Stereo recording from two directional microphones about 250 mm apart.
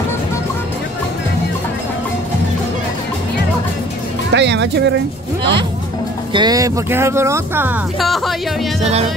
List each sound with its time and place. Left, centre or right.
4.3 s speech: right
6.3 s speech: centre
8.8 s music: right